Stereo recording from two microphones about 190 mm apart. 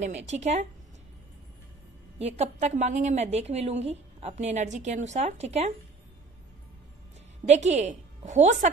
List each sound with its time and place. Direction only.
0.0 s a woman's voice: 35° right (ahead or behind)
2.1 s a woman's voice: 35° right (ahead or behind)
7.4 s a woman's voice: 35° right (ahead or behind)